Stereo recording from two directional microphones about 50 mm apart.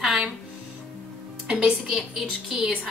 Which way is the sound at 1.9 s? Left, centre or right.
Centre.